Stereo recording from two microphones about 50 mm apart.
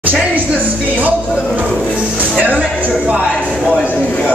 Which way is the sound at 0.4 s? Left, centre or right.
Right.